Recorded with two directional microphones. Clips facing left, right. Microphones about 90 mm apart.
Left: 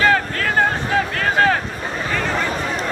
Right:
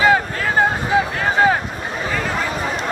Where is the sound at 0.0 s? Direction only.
15° right (ahead or behind).